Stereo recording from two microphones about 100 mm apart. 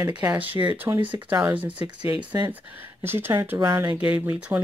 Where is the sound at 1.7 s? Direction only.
55° right (ahead or behind).